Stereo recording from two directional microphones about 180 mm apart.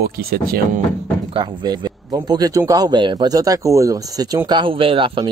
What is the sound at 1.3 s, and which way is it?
A man's voice, 25° right (ahead or behind).